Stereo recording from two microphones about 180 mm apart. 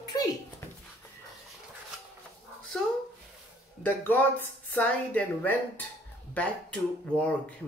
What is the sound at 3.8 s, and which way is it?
Speech, 10° left (ahead or behind).